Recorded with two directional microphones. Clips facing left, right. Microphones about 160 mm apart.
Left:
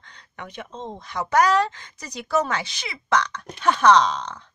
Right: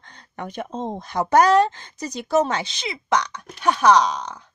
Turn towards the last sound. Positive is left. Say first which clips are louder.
# even
turn(degrees=-10)  # may be behind; listen again after turning